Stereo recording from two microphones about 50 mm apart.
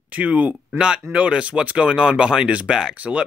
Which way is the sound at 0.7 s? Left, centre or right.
Centre.